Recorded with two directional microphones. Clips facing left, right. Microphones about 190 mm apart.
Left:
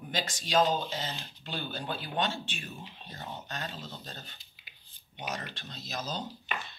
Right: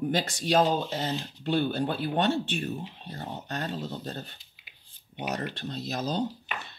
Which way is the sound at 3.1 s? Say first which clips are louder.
Right 5 dB; 35° right (ahead or behind).